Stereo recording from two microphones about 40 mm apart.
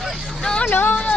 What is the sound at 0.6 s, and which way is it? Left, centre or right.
Speech, left.